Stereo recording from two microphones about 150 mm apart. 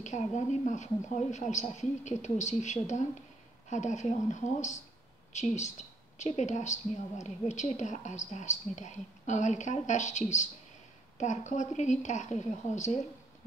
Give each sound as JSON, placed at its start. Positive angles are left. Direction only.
{"t": 0.0, "sound": "a woman's voice", "side_deg": 50}